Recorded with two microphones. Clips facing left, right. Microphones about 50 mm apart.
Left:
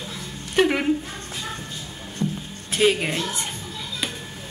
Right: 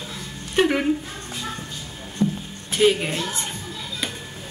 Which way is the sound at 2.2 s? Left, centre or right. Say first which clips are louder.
Right 4 dB; right.